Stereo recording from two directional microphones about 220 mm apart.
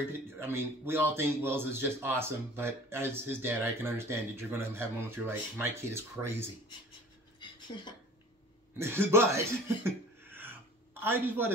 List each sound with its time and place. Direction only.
0.4 s speech: 10° right (ahead or behind)
7.3 s dishes: 20° left (ahead or behind)
8.7 s speech: 10° right (ahead or behind)